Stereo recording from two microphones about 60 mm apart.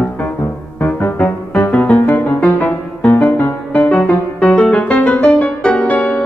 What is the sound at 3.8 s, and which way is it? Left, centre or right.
Music, left.